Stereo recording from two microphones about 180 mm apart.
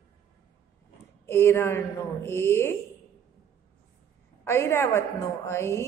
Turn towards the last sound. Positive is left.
turn(degrees=15)  # may be behind; listen again after turning